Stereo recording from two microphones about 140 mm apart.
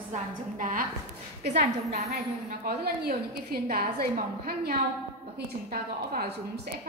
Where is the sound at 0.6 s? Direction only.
75° right (ahead or behind).